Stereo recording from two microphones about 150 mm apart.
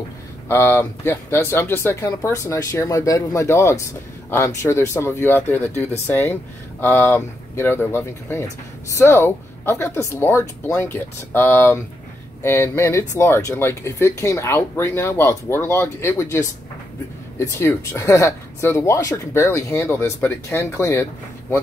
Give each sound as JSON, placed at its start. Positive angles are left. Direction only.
{"t": 0.5, "sound": "speech", "side_deg": 15}